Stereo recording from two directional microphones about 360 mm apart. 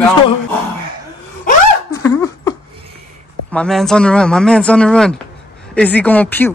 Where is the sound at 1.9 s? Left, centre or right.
Centre.